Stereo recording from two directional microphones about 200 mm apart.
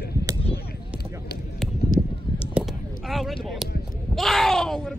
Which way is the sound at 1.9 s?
40° left (ahead or behind).